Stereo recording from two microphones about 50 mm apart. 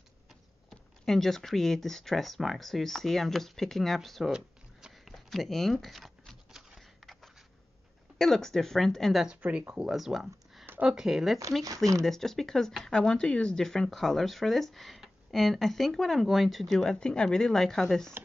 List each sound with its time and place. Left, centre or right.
0.7 s speech: centre
5.0 s shuffling cards: centre
8.2 s speech: centre
9.5 s speech: right
9.8 s speech: centre
12.0 s speech: centre